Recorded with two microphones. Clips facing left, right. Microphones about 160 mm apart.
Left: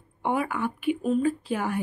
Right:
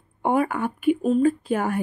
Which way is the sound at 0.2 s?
45° right (ahead or behind).